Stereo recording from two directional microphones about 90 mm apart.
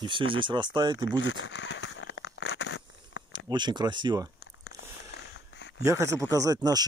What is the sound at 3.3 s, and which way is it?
Speech, 55° right (ahead or behind).